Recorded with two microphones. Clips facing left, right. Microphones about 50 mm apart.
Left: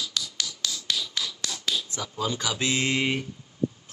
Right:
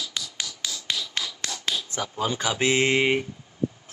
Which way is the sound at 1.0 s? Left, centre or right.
Right.